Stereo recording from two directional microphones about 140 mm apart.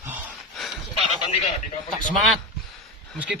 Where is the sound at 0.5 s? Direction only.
Centre (ahead or behind).